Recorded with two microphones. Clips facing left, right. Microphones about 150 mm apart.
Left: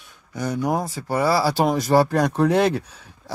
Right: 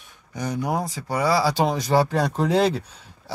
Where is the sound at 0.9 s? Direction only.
5° left (ahead or behind).